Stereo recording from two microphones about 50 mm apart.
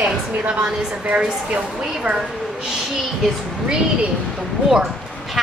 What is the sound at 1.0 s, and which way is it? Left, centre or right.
Speech, right.